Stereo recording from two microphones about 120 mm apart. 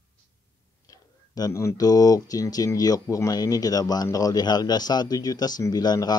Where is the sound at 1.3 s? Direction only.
30° left (ahead or behind).